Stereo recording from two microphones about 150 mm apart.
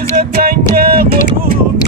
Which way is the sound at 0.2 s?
80° right.